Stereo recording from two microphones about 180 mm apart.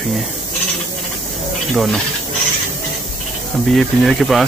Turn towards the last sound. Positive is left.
turn(degrees=0)  # may be behind; listen again after turning